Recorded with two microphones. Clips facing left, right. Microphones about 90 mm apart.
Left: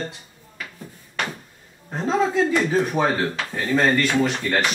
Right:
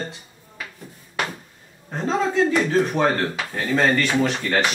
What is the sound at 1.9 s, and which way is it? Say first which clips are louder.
Speech: left 1 dB; 5° left (ahead or behind).